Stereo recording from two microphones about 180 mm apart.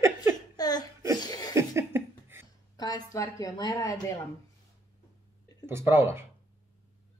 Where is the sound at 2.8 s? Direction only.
20° left (ahead or behind).